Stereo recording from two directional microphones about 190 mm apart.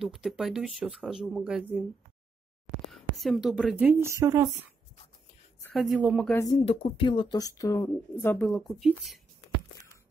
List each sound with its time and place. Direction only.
0.0 s speech: centre (ahead or behind)
2.9 s speech: centre (ahead or behind); by 4.5 s 15° right (ahead or behind)
5.6 s speech: 5° left (ahead or behind)
6.3 s speech: 20° left (ahead or behind)
6.6 s speech: 30° left (ahead or behind); by 8.5 s 10° left (ahead or behind)
8.5 s speech: centre (ahead or behind)